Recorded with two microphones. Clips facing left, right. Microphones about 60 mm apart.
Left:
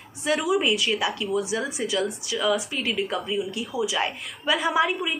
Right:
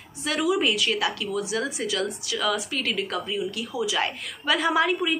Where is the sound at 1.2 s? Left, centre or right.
Left.